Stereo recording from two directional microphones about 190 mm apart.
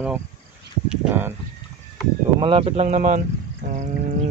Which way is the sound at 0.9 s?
10° right (ahead or behind).